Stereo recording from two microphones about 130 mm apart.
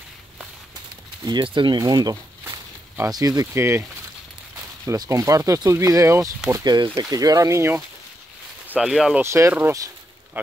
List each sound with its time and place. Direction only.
1.2 s speech: 35° right (ahead or behind)
4.8 s speech: 25° right (ahead or behind)
8.6 s speech: 5° right (ahead or behind)
9.2 s speech: 20° right (ahead or behind)